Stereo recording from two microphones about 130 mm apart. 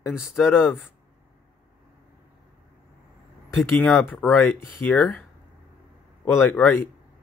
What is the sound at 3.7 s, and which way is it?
Speech, 15° left (ahead or behind).